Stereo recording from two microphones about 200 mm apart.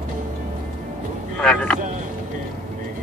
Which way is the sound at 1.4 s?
5° left (ahead or behind).